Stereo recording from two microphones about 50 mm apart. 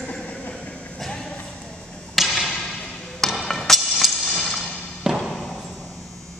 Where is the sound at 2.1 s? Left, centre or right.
Centre.